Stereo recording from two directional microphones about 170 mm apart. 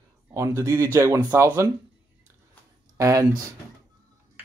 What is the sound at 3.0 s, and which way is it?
Speech, 15° right (ahead or behind).